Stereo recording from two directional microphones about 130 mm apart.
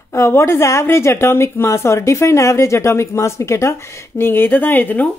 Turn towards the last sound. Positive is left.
turn(degrees=15)  # may be behind; listen again after turning